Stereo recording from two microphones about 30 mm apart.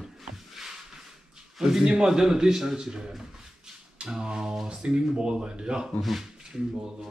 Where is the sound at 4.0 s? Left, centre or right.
Right.